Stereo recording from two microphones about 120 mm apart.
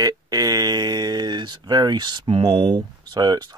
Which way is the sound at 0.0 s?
30° right (ahead or behind).